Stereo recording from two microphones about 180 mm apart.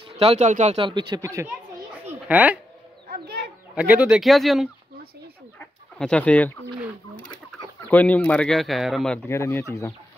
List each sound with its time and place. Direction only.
0.2 s speech: 35° right (ahead or behind)
0.7 s speech: 25° right (ahead or behind)
2.0 s a sound: 10° right (ahead or behind)
3.1 s chicken: 60° right (ahead or behind)
3.7 s speech: 10° right (ahead or behind); by 6.6 s 10° left (ahead or behind)
7.9 s speech: 10° left (ahead or behind)